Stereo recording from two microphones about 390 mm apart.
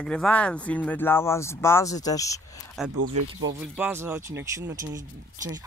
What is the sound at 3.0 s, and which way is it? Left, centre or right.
Speech, right.